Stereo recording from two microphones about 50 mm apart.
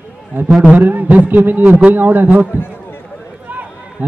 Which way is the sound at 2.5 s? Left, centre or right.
Left.